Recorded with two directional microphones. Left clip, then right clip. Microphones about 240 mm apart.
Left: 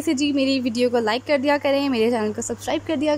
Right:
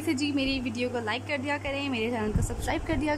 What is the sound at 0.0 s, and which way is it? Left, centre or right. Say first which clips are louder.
A woman's voice: left 7 dB; centre.